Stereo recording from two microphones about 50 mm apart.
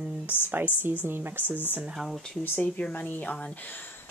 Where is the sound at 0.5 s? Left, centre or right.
Right.